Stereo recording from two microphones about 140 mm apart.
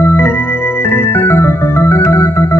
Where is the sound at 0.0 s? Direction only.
15° left (ahead or behind).